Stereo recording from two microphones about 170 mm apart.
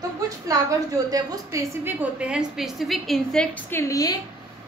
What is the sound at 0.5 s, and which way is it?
A woman's voice, 20° right (ahead or behind).